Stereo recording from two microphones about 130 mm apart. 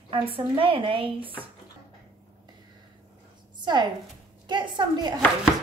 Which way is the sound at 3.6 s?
35° right (ahead or behind).